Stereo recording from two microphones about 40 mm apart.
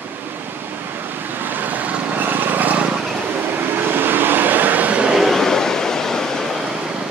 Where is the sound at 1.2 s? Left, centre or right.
Right.